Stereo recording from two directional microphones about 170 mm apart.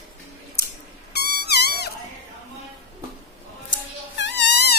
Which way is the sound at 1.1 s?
75° left (ahead or behind).